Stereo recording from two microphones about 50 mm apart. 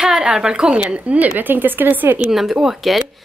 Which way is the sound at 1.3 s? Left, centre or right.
Right.